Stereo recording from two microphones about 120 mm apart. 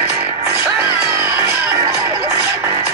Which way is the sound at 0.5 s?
20° right (ahead or behind).